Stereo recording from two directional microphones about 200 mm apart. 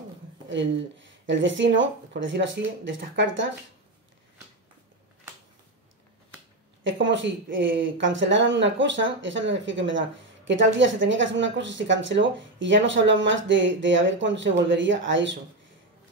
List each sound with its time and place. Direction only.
0.5 s speech: 65° right (ahead or behind)
6.8 s speech: 65° right (ahead or behind)